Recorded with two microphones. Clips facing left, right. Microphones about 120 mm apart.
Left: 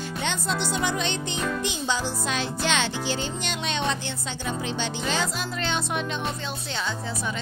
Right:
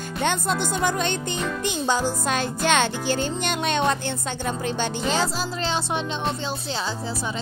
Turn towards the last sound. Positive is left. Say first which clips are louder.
# right 2 dB
turn(degrees=-30)  # may be behind; listen again after turning